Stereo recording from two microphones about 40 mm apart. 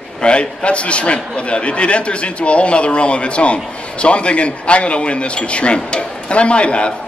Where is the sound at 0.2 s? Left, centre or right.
Left.